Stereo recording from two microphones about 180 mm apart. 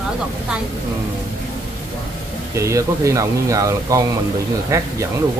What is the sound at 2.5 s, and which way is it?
Speech, 15° right (ahead or behind).